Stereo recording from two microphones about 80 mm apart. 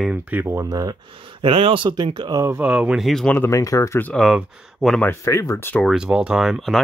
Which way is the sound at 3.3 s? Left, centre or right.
Left.